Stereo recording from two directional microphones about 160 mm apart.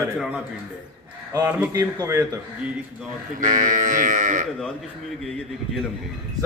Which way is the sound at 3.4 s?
55° right (ahead or behind).